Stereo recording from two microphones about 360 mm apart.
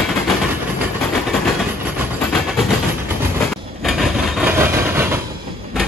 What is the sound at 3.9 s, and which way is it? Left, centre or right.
Vehicle, centre.